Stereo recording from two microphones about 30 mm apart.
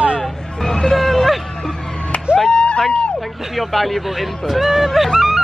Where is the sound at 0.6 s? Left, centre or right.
Centre.